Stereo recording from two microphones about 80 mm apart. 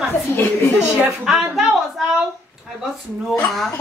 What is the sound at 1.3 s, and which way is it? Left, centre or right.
Speech, centre.